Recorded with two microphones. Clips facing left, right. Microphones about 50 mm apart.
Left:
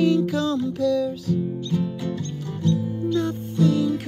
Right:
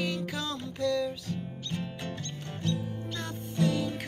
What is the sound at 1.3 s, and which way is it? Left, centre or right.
Music, right.